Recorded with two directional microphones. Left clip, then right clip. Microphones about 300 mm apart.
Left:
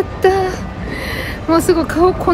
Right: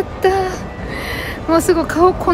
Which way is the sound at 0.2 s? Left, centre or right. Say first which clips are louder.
Left 2 dB; centre.